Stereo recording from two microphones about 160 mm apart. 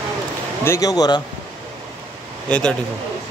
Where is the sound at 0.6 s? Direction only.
20° left (ahead or behind).